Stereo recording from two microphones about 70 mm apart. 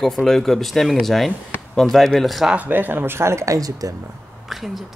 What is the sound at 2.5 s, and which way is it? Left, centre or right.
Speech, right.